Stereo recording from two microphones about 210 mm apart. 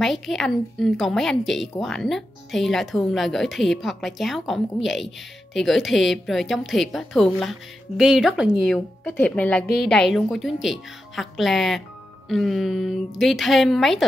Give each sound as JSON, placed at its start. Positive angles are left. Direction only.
{"t": 0.0, "sound": "a woman's voice", "side_deg": 0}